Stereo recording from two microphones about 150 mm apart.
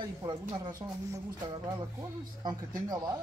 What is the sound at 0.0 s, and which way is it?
Speech, 30° right (ahead or behind).